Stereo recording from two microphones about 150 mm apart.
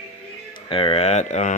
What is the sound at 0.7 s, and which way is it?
Speech, 35° left (ahead or behind).